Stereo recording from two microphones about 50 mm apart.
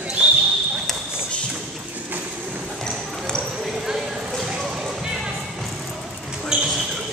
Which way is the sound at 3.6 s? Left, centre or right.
Centre.